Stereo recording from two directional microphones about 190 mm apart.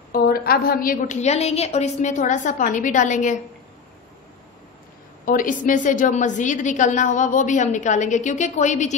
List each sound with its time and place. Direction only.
0.1 s a woman's voice: 50° left (ahead or behind)
5.2 s a woman's voice: 45° left (ahead or behind)